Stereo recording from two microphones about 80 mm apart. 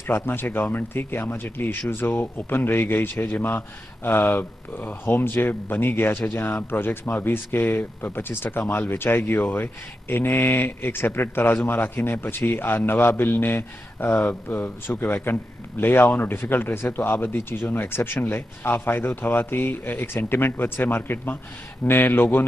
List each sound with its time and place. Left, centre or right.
0.0 s speech: left